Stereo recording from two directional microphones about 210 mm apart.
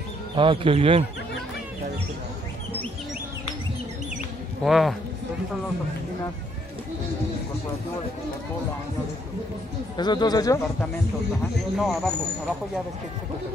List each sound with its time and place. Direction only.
0.4 s speech: 25° right (ahead or behind)
4.6 s speech: centre (ahead or behind)
9.9 s speech: 20° left (ahead or behind)
11.7 s speech: centre (ahead or behind)